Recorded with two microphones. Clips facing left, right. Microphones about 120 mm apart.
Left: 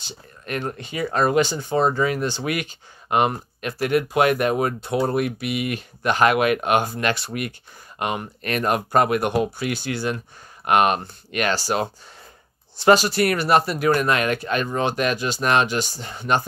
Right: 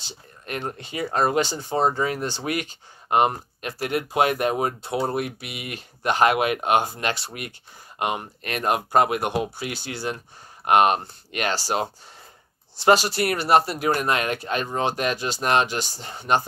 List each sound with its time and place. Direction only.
0.5 s speech: 25° right (ahead or behind)